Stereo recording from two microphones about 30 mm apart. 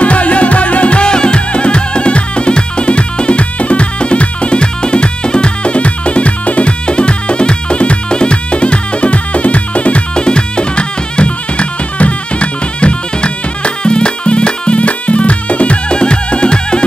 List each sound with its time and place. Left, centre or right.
0.0 s music: left
6.9 s music: left
10.1 s music: left
15.9 s music: left